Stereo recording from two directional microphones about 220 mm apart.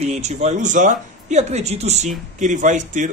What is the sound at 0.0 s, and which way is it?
A man's voice, 30° right (ahead or behind).